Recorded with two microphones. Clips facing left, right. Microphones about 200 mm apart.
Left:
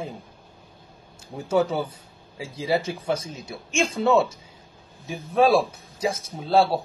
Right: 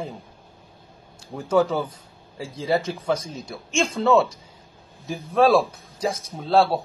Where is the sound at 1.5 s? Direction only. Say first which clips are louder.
Right 2 dB; 5° left (ahead or behind).